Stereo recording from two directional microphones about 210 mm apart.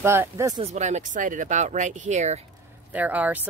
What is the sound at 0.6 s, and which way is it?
Speech, 35° right (ahead or behind).